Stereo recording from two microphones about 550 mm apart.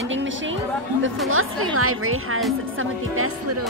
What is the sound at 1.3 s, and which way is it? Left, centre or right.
Speech, right.